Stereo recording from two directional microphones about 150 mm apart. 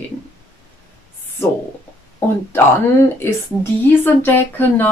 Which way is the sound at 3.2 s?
15° left (ahead or behind).